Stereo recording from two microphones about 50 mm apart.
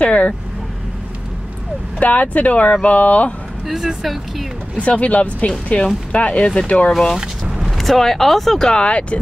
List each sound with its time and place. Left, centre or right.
0.0 s speech: left
2.0 s speech: left
3.6 s speech: centre
4.7 s speech: left
7.2 s a sound: centre
7.7 s speech: centre; by 9.2 s left